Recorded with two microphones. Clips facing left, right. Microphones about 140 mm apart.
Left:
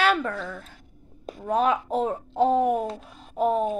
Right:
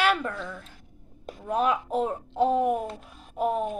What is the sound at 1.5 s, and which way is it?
A woman's voice, 10° right (ahead or behind).